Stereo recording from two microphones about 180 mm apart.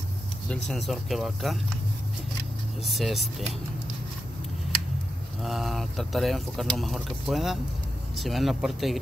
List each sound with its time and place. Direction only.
0.5 s speech: centre (ahead or behind)
2.8 s speech: centre (ahead or behind)
5.4 s speech: centre (ahead or behind)